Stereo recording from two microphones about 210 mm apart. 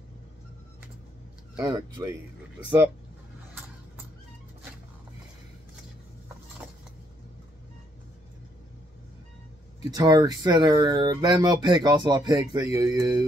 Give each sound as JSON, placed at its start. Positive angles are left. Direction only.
{"t": 1.6, "sound": "speech", "side_deg": -20}
{"t": 9.8, "sound": "speech", "side_deg": -20}